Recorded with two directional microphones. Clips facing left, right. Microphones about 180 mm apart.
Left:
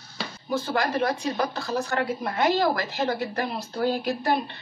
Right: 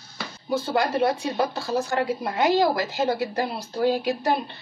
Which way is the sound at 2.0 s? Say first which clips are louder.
Right 2 dB; 10° right (ahead or behind).